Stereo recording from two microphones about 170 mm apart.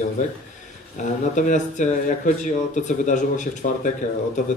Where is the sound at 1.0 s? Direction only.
45° left (ahead or behind).